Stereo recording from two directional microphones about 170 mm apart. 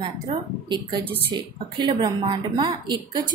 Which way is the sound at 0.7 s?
30° right (ahead or behind).